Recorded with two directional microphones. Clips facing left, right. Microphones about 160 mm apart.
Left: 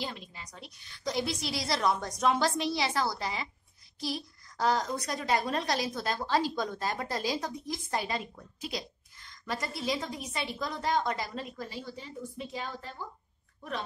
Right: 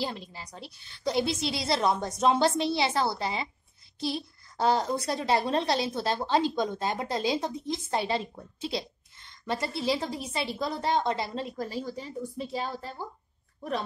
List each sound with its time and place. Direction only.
0.0 s speech: 35° right (ahead or behind)